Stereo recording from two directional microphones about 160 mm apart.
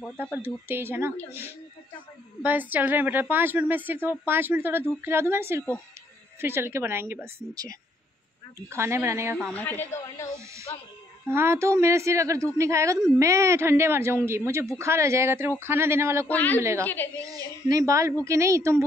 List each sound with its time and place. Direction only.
0.2 s a woman's voice: 15° right (ahead or behind)
8.6 s a woman's voice: 15° right (ahead or behind)
9.4 s speech: 10° left (ahead or behind)
11.2 s a woman's voice: 15° right (ahead or behind)
16.3 s speech: 10° left (ahead or behind)
17.2 s speech: 25° right (ahead or behind)